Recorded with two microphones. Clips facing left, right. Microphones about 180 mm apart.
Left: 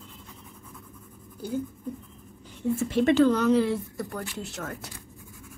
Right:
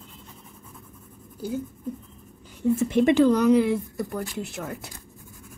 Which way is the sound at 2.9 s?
15° right (ahead or behind).